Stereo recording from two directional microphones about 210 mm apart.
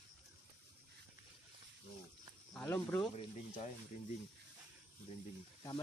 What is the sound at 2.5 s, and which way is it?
Speech, 10° left (ahead or behind).